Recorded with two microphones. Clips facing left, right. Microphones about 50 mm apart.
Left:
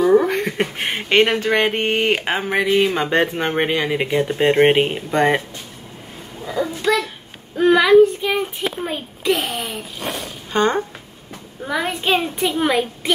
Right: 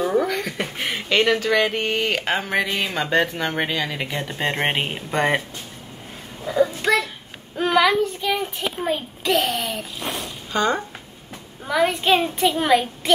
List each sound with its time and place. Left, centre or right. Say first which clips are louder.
0.2 s speech: left 4 dB; left
2.2 s speech: left 3 dB; centre
6.8 s a child's voice: left 1 dB; right
7.5 s speech: left 3 dB; centre
7.9 s speech: left 9 dB; centre
10.5 s speech: left 3 dB; left
11.6 s speech: right 2 dB; centre